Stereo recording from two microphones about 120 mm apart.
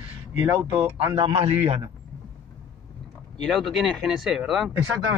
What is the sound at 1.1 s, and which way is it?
Speech, 50° right (ahead or behind).